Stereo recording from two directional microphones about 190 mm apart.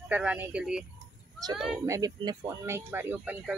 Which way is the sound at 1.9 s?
20° right (ahead or behind).